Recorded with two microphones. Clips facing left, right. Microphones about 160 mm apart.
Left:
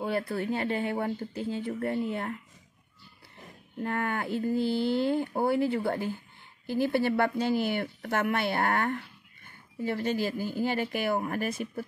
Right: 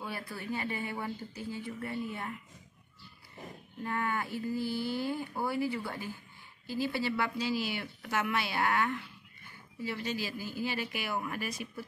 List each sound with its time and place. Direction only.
0.0 s speech: 55° left (ahead or behind)
3.8 s a woman's voice: 55° left (ahead or behind)